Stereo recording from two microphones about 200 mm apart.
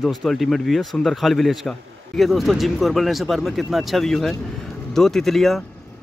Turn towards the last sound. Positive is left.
turn(degrees=0)  # may be behind; listen again after turning